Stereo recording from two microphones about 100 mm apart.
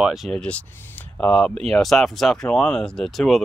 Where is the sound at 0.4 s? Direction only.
10° left (ahead or behind).